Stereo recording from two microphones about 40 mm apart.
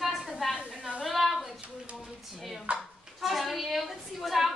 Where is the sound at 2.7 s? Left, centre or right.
Right.